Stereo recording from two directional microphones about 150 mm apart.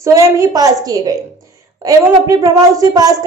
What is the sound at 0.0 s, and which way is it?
Speech, 20° right (ahead or behind).